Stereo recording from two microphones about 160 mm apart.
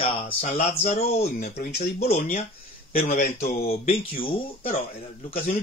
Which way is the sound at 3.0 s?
75° left (ahead or behind).